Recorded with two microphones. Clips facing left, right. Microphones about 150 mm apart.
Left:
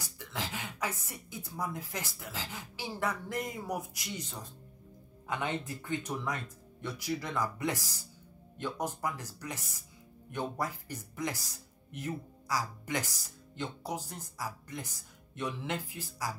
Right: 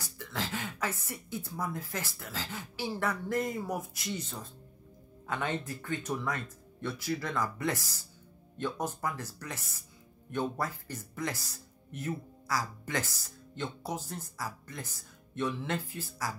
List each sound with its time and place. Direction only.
0.0 s speech: 15° left (ahead or behind)